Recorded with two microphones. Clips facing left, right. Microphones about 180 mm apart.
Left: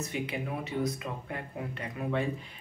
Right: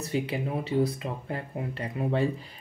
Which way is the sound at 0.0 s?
30° right (ahead or behind).